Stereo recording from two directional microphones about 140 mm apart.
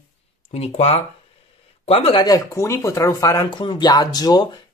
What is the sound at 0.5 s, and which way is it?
Speech, 50° left (ahead or behind).